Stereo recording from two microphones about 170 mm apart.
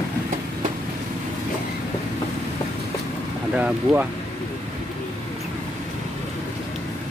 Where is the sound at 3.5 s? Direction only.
10° right (ahead or behind).